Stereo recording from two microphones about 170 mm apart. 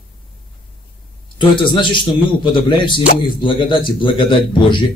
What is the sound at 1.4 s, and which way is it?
A man's voice, 30° left (ahead or behind).